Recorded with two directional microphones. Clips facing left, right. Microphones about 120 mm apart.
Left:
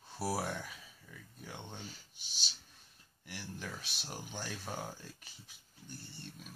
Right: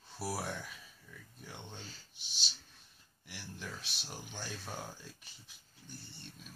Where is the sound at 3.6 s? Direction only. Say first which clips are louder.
Right 1 dB; 50° left (ahead or behind).